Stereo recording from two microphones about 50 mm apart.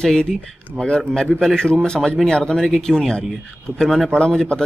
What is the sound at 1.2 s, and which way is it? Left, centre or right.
A man's voice, centre.